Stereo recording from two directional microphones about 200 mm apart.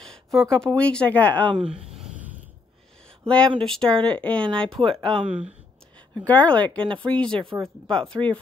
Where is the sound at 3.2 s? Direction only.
5° left (ahead or behind).